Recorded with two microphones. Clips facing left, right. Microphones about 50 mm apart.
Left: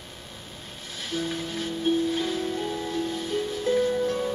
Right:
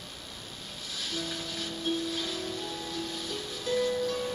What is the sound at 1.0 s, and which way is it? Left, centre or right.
Music, left.